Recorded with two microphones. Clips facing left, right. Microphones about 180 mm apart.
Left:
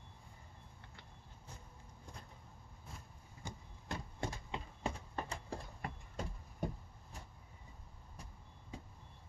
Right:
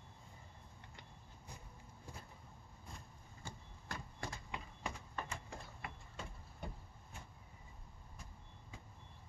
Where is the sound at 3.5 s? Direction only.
20° left (ahead or behind); by 6.2 s 35° left (ahead or behind).